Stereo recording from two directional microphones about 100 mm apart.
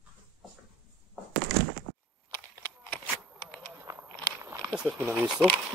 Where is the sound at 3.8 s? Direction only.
30° right (ahead or behind).